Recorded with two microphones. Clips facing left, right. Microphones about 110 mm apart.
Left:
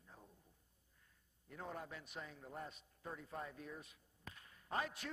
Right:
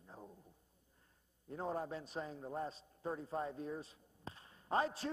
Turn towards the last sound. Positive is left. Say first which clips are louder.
# right 7 dB
turn(degrees=-30)  # may be behind; listen again after turning